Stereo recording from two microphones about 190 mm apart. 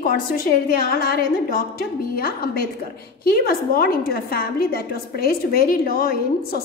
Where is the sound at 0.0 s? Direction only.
50° left (ahead or behind).